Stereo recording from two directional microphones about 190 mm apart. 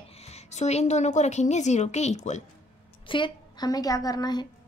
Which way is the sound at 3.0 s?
25° left (ahead or behind).